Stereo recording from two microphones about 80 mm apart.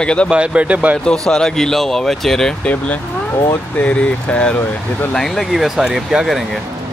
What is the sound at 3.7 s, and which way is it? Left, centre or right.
Speech, centre.